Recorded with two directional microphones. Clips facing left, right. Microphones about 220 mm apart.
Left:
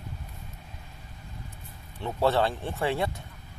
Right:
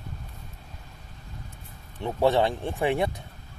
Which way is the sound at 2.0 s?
15° right (ahead or behind).